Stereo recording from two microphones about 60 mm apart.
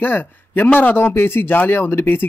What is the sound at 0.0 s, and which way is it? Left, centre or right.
A man's voice, left.